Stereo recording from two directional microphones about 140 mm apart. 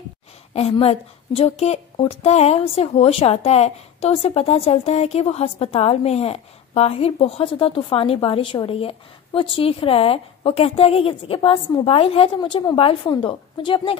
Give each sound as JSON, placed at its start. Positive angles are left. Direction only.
{"t": 0.5, "sound": "a woman's voice", "side_deg": 50}